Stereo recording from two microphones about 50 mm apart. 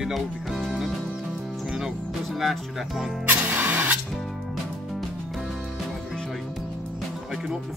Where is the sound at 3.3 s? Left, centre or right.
Right.